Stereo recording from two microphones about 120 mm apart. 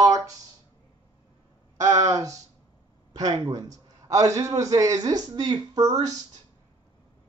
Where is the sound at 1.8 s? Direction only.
30° right (ahead or behind).